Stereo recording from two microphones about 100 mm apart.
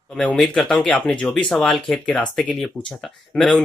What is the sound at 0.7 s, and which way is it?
Speech, 10° left (ahead or behind).